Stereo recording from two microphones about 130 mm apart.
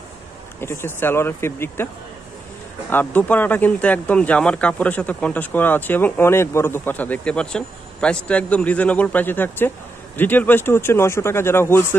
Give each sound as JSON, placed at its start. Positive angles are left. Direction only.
{"t": 0.6, "sound": "speech", "side_deg": 20}
{"t": 2.9, "sound": "speech", "side_deg": 15}